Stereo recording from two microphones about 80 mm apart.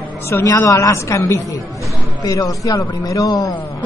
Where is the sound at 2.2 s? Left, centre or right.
Left.